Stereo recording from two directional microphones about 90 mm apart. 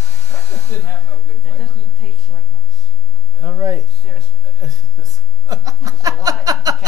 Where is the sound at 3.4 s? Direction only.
45° right (ahead or behind).